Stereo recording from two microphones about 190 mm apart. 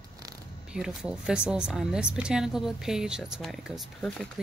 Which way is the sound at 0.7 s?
5° right (ahead or behind).